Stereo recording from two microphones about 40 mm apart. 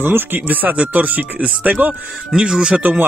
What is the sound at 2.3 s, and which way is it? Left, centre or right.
Speech, right.